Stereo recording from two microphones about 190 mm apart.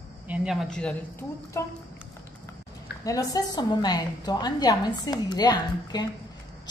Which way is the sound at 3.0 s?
20° left (ahead or behind).